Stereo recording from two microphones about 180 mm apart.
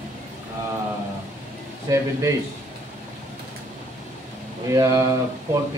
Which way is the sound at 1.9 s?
20° right (ahead or behind).